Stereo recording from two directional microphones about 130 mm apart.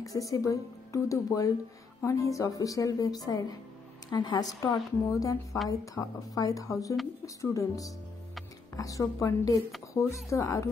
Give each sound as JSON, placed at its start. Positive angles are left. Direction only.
{"t": 0.0, "sound": "a woman's voice", "side_deg": 25}